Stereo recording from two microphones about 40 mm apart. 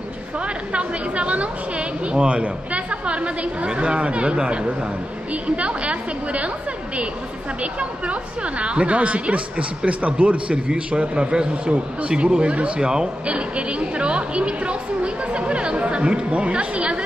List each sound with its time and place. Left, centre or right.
0.7 s a woman's voice: right
8.1 s a woman's voice: right